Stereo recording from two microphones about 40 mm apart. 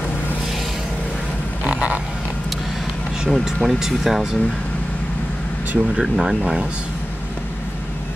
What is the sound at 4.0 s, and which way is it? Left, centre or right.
Speech, centre.